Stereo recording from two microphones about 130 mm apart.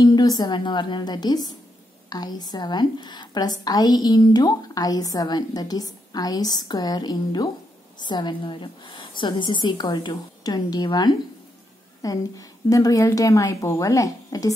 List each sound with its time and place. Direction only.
0.0 s a woman's voice: 30° left (ahead or behind)